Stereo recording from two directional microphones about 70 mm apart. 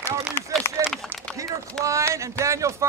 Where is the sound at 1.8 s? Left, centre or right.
Right.